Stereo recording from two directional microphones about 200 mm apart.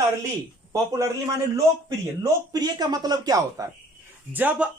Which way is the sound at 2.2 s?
20° right (ahead or behind).